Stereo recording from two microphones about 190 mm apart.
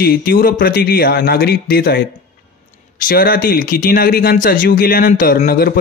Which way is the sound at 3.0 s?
50° left (ahead or behind).